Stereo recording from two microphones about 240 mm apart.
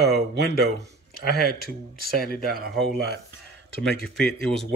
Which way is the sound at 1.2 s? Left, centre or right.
Left.